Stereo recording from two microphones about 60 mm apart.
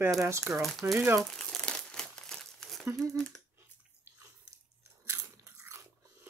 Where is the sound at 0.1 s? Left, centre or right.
Right.